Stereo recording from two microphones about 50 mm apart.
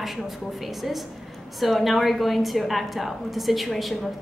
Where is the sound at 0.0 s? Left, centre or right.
Centre.